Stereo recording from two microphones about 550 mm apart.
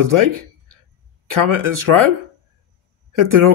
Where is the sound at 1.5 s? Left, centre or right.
Right.